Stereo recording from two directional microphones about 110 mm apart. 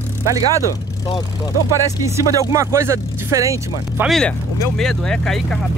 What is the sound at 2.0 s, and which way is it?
Speech, 25° right (ahead or behind).